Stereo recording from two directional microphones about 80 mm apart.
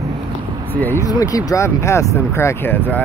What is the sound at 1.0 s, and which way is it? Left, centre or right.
Speech, left.